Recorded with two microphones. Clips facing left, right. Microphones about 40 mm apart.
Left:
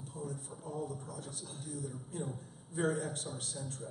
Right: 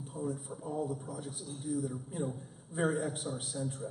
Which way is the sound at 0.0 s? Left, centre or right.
Centre.